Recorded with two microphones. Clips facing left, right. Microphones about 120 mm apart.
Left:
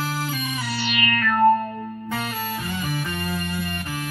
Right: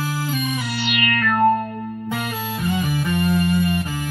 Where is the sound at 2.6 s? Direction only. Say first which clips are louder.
Right 6 dB; 15° right (ahead or behind).